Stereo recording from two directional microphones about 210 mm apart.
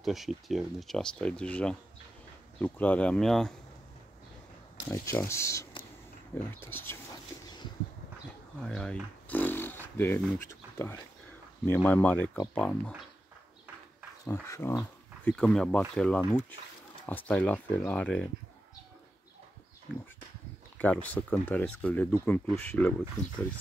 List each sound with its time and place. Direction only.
0.0 s speech: centre (ahead or behind)
4.8 s speech: 10° left (ahead or behind)
7.4 s a sound: 20° left (ahead or behind)
8.6 s speech: 5° left (ahead or behind)
14.2 s speech: 10° left (ahead or behind)
20.7 s speech: 5° left (ahead or behind)